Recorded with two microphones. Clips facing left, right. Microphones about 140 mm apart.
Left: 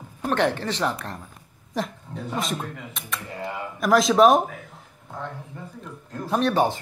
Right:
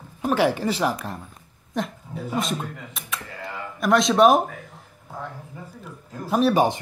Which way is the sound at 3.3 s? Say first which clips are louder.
Left 3 dB; 20° left (ahead or behind).